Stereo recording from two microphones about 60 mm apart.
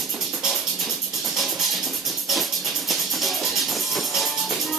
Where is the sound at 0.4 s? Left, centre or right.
Centre.